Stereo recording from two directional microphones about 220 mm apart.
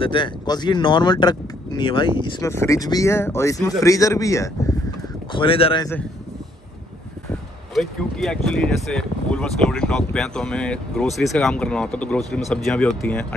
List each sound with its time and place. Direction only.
0.0 s speech: 20° left (ahead or behind)
5.3 s speech: 25° left (ahead or behind)
7.7 s speech: centre (ahead or behind)